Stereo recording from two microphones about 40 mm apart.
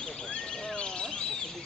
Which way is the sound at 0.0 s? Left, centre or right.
Left.